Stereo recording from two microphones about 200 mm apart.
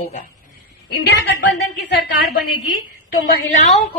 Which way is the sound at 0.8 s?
55° left (ahead or behind).